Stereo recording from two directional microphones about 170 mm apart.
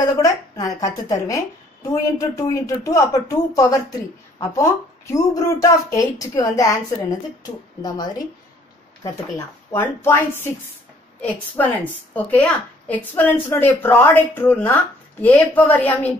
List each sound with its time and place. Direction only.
0.0 s a woman's voice: 20° left (ahead or behind)
9.7 s a woman's voice: 15° left (ahead or behind)